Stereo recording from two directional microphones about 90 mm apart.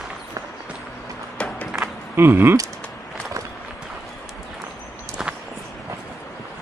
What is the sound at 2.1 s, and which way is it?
Speech, 25° right (ahead or behind).